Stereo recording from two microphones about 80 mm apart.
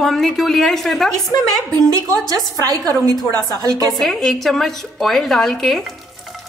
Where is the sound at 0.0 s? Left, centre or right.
Centre.